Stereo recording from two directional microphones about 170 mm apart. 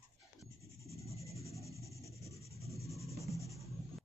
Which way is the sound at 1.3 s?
20° left (ahead or behind).